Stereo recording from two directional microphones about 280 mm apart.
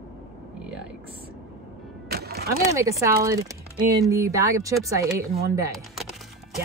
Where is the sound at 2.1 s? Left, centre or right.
Right.